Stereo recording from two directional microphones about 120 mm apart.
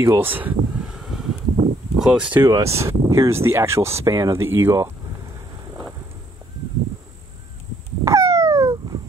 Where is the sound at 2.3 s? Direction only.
20° right (ahead or behind).